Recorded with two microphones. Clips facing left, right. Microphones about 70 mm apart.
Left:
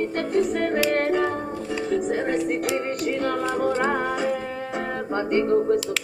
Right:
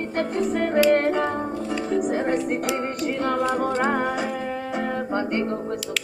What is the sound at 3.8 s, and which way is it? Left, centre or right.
Music, centre.